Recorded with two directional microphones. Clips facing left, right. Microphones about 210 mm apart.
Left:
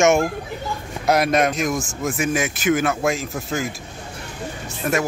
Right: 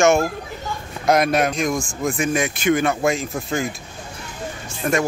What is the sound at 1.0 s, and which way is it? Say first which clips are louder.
Speech: even; 5° left (ahead or behind).